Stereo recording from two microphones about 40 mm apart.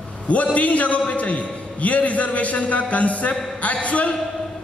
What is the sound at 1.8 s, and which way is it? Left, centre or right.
A man's voice, left.